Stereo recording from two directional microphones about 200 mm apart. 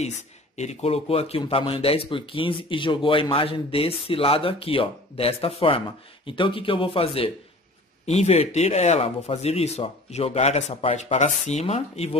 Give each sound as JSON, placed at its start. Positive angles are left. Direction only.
{"t": 0.6, "sound": "speech", "side_deg": 35}